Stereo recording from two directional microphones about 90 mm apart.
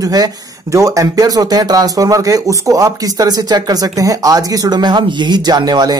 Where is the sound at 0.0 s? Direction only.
45° right (ahead or behind).